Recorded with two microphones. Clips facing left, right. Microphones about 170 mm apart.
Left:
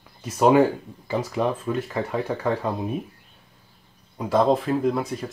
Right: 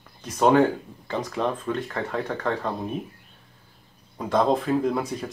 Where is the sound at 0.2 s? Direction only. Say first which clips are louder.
Left 1 dB; 10° left (ahead or behind).